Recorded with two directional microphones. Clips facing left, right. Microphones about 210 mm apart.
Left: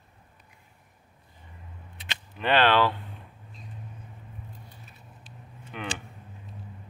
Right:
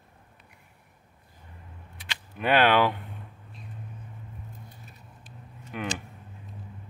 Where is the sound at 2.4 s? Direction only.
10° right (ahead or behind).